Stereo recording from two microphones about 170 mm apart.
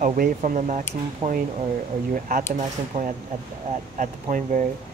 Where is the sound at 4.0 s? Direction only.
50° right (ahead or behind).